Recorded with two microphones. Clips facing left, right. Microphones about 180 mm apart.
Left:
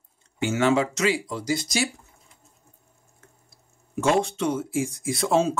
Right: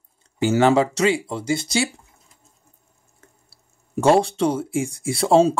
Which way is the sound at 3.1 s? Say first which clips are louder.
Right 2 dB; 35° right (ahead or behind).